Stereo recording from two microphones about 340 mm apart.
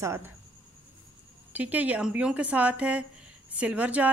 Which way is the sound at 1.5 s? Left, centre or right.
Centre.